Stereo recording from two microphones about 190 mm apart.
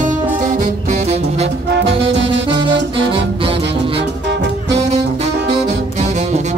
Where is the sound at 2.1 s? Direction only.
70° right (ahead or behind).